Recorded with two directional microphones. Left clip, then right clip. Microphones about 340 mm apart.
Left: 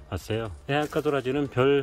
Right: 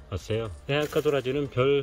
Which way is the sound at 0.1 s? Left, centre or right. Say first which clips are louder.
Even; centre.